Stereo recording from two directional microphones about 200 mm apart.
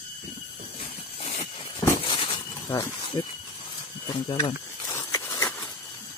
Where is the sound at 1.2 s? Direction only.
35° left (ahead or behind).